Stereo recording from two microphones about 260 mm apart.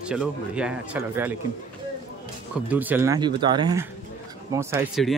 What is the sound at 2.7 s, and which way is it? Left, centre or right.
Speech, centre.